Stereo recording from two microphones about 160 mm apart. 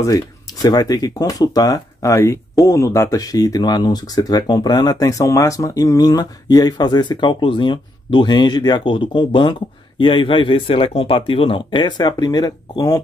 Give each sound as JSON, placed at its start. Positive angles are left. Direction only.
{"t": 0.0, "sound": "speech", "side_deg": 25}